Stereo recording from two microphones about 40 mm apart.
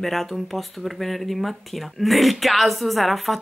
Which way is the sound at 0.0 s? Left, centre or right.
Centre.